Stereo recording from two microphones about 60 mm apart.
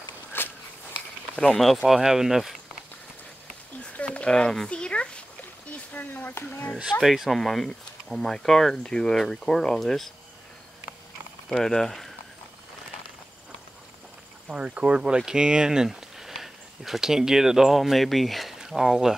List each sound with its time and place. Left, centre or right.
0.4 s walk: left
1.3 s speech: centre
3.8 s a sound: centre
5.7 s speech: left
7.0 s speech: centre
11.4 s speech: centre
14.5 s speech: centre